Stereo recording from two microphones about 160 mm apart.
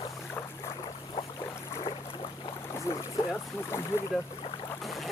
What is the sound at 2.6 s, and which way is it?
Boat, 20° left (ahead or behind).